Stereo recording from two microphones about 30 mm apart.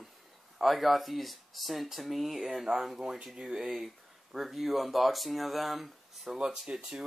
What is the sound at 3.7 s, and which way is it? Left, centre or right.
Speech, centre.